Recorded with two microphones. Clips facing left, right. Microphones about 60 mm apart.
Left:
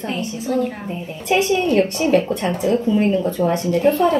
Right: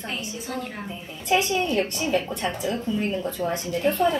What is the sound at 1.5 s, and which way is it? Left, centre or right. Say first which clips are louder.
Speech: left 7 dB; left.